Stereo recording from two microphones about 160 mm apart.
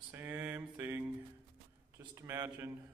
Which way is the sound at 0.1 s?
10° right (ahead or behind).